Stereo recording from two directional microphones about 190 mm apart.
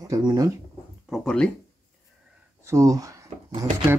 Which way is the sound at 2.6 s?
15° right (ahead or behind).